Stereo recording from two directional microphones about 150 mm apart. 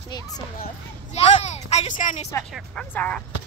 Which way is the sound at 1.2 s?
45° left (ahead or behind).